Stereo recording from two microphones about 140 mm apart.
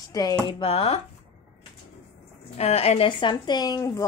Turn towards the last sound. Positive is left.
turn(degrees=25)  # may be behind; listen again after turning